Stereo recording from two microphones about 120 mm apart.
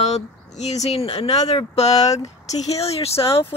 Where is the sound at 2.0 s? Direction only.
30° left (ahead or behind).